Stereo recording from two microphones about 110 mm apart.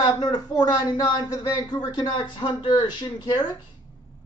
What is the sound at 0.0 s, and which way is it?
Speech, 40° left (ahead or behind).